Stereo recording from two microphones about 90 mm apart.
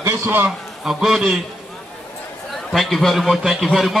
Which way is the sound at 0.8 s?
5° right (ahead or behind).